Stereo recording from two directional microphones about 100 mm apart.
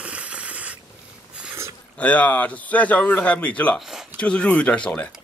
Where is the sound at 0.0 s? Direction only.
15° right (ahead or behind).